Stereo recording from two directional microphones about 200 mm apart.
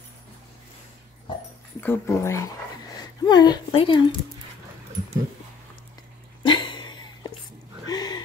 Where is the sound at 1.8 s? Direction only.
10° left (ahead or behind).